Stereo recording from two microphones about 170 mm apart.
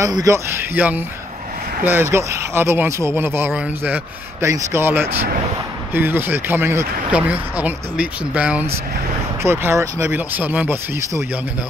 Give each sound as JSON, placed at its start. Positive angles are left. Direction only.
{"t": 0.0, "sound": "speech", "side_deg": -20}